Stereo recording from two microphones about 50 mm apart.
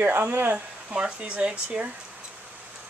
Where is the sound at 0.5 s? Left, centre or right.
Right.